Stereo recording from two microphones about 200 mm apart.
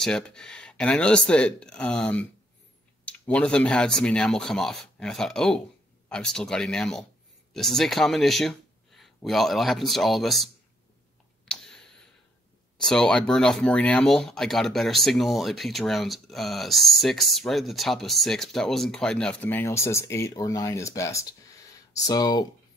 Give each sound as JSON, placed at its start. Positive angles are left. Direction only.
{"t": 0.0, "sound": "speech", "side_deg": 5}
{"t": 11.4, "sound": "a sound", "side_deg": 5}
{"t": 12.8, "sound": "speech", "side_deg": 5}